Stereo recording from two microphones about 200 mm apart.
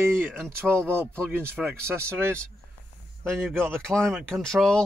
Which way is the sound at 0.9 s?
10° right (ahead or behind).